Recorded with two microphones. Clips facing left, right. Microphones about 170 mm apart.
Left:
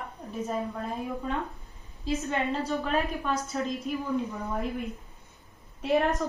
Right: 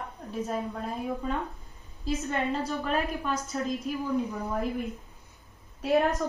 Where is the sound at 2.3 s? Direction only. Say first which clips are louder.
Even; centre (ahead or behind).